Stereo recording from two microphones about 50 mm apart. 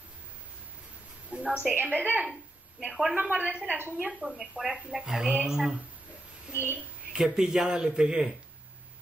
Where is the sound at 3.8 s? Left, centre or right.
Right.